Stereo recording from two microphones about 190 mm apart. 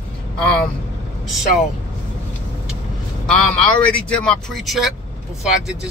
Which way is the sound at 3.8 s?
5° left (ahead or behind).